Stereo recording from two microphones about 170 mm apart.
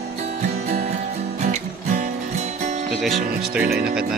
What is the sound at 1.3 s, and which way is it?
Music, 45° right (ahead or behind).